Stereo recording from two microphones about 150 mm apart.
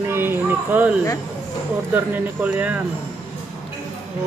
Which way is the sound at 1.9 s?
10° right (ahead or behind).